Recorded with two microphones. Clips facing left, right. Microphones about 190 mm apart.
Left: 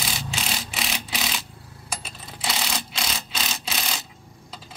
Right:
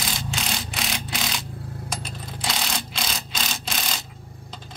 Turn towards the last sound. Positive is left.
turn(degrees=0)  # may be behind; listen again after turning